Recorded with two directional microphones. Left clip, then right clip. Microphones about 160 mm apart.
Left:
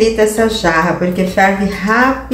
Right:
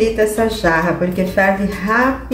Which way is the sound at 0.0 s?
10° right (ahead or behind).